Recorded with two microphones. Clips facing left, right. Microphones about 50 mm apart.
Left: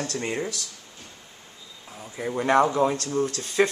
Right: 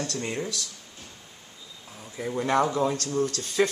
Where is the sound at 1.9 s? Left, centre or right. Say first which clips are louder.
Left 2 dB; centre.